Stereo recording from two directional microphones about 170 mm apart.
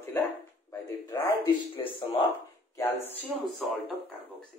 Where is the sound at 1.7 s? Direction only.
30° left (ahead or behind).